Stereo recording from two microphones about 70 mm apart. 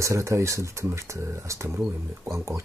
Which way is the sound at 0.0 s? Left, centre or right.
Right.